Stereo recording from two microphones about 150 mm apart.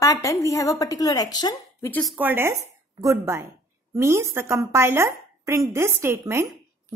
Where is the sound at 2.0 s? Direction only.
10° right (ahead or behind).